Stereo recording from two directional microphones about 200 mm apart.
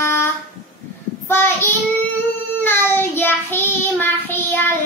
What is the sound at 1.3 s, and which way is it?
Child singing, 10° left (ahead or behind).